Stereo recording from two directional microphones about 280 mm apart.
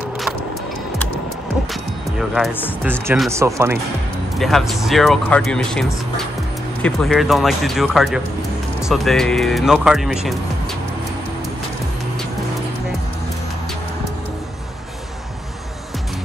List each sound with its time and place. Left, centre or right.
1.7 s speech: centre
4.4 s speech: centre